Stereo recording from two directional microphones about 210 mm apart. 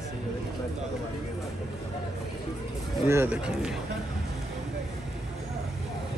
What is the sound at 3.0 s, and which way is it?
Speech, 10° right (ahead or behind).